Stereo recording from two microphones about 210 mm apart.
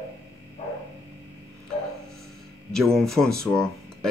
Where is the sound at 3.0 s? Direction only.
Centre (ahead or behind).